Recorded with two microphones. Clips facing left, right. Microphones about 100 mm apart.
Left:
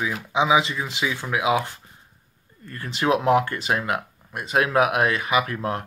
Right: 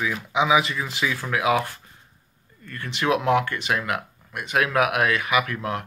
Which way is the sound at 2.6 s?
35° left (ahead or behind).